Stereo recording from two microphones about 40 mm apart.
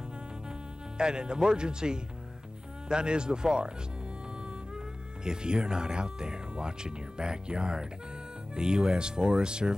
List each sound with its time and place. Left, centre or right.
0.9 s speech: centre
5.2 s speech: centre